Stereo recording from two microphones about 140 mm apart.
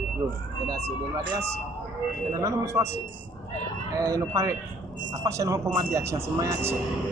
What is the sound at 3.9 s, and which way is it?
Speech, 25° right (ahead or behind).